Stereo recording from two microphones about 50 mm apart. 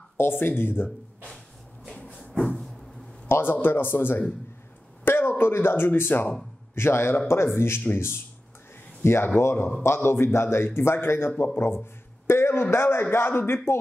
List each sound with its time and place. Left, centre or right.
0.2 s speech: left
2.0 s a sound: left
2.4 s vehicle: centre
3.3 s speech: left
5.0 s a sound: left
5.4 s speech: left
6.7 s speech: left
12.3 s a sound: left
12.7 s speech: left